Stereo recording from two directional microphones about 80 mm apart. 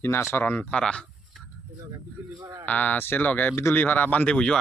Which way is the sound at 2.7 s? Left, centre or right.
Left.